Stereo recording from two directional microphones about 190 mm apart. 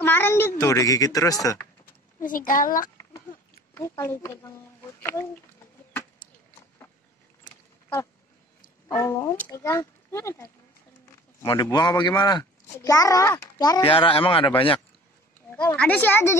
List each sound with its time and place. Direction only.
0.0 s speech: 10° left (ahead or behind)
2.1 s a child's voice: 45° left (ahead or behind)
3.7 s speech: 15° left (ahead or behind)
6.8 s a sound: 10° left (ahead or behind)
8.8 s a child's voice: 15° left (ahead or behind)
15.5 s speech: 5° left (ahead or behind)